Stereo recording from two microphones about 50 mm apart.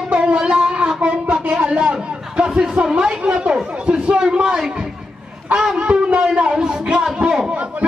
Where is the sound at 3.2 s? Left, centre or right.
Centre.